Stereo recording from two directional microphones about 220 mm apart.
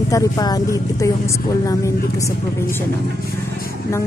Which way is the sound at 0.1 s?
15° left (ahead or behind).